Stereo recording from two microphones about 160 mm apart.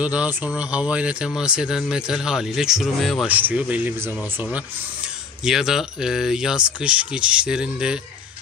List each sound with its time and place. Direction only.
0.0 s speech: 10° right (ahead or behind)